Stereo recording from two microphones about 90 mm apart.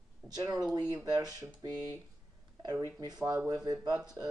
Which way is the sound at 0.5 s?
50° right (ahead or behind).